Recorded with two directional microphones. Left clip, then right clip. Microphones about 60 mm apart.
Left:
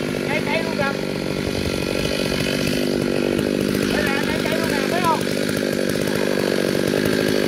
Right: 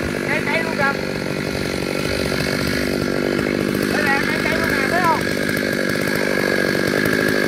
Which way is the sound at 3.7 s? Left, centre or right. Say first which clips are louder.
Right 2 dB; left.